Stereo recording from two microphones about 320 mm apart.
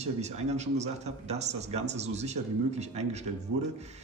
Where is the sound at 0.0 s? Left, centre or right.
Right.